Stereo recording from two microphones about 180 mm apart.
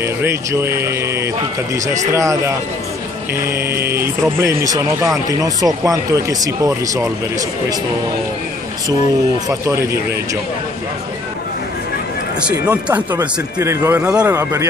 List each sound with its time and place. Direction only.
0.0 s speech: 15° right (ahead or behind)
9.5 s speech: 15° right (ahead or behind)
12.4 s speech: 5° right (ahead or behind)